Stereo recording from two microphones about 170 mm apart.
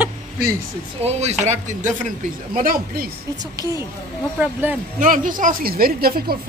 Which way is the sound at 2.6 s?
60° right (ahead or behind).